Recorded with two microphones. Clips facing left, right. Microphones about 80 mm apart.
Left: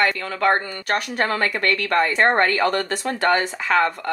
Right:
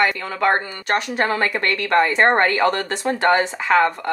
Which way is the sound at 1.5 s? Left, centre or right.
Centre.